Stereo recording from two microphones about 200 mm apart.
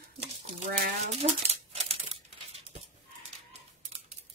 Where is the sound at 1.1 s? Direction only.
30° right (ahead or behind).